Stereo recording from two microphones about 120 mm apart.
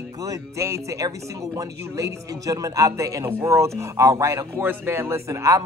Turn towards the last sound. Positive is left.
turn(degrees=-25)  # may be behind; listen again after turning